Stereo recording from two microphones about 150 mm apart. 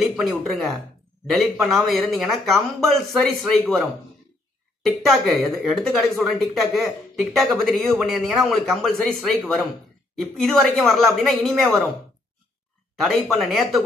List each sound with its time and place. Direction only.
0.1 s speech: centre (ahead or behind)
2.5 s speech: 20° right (ahead or behind)
3.4 s speech: 5° left (ahead or behind)
4.8 s speech: centre (ahead or behind)
12.9 s speech: centre (ahead or behind)